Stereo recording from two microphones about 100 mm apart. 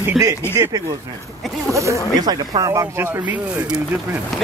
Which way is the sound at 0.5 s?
30° right (ahead or behind).